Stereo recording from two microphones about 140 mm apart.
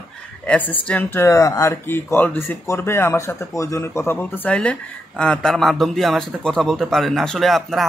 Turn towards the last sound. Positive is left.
turn(degrees=0)  # may be behind; listen again after turning